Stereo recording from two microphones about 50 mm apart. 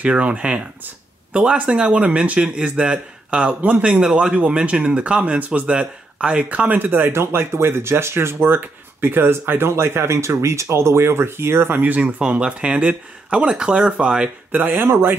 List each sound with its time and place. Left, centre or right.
0.0 s speech: right
6.7 s speech: right
7.1 s speech: right
12.0 s speech: right
14.5 s speech: right
14.9 s speech: right